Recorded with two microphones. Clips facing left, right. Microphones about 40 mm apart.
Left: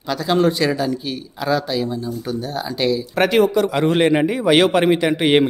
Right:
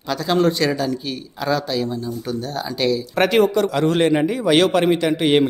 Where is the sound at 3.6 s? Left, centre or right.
Centre.